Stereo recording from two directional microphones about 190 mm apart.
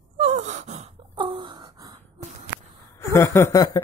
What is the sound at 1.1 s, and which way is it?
Wail, 25° right (ahead or behind).